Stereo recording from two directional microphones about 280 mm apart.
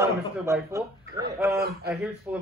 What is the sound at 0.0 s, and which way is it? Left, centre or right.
A man's voice, centre.